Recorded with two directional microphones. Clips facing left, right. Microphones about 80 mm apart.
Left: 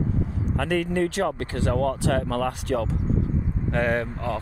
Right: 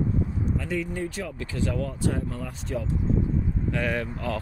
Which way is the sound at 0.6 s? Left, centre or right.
Left.